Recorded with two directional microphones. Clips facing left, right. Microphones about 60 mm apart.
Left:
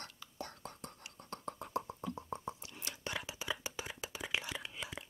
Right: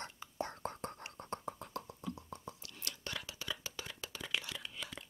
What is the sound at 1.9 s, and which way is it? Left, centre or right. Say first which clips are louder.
Whispering: left 3 dB; left.